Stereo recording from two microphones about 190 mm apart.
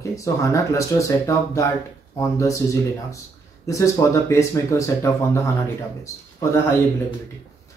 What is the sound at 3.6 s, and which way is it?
Speech, 15° left (ahead or behind).